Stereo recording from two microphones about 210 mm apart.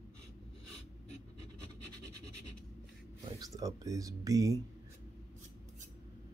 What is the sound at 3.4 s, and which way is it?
Speech, 15° right (ahead or behind).